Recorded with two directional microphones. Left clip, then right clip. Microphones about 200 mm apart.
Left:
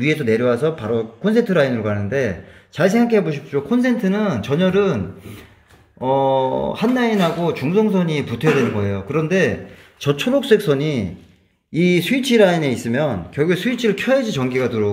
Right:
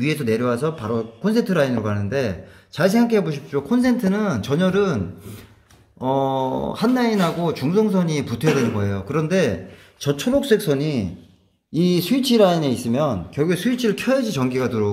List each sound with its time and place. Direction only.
0.0 s a man's voice: 5° right (ahead or behind)
11.7 s speech: 25° left (ahead or behind)
12.4 s a man's voice: centre (ahead or behind)